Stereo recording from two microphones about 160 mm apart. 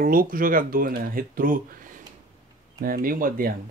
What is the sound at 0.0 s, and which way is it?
Speech, 60° right (ahead or behind).